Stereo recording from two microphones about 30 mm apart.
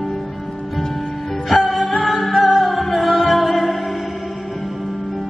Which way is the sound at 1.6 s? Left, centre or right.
Centre.